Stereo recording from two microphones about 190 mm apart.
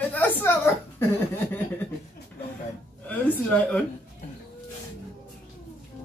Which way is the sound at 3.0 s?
5° left (ahead or behind).